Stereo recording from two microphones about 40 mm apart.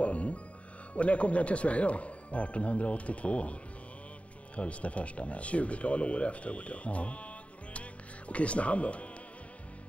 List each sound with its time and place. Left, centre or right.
0.0 s music: left
0.9 s speech: left
4.6 s speech: left
7.7 s music: left